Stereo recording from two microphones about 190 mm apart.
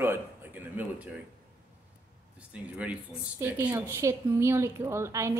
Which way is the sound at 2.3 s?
5° right (ahead or behind).